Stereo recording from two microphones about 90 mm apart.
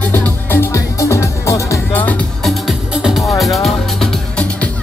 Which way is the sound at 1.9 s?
20° left (ahead or behind).